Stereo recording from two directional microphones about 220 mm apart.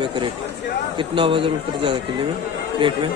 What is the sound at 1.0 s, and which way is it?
Speech, 25° right (ahead or behind).